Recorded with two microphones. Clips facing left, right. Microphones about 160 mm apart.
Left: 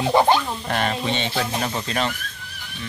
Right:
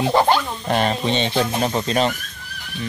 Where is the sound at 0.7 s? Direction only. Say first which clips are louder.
Right 6 dB; 20° right (ahead or behind).